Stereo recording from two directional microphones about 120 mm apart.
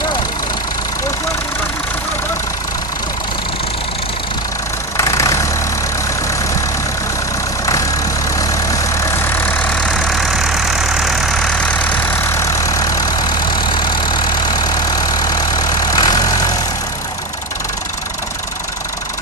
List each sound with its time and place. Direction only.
4.9 s vehicle: 25° left (ahead or behind)
8.3 s vehicle: 30° left (ahead or behind)
9.8 s vehicle: centre (ahead or behind)
12.4 s vehicle: 30° left (ahead or behind)